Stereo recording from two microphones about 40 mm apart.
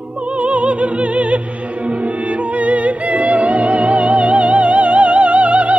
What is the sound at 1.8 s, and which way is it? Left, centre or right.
Music, right.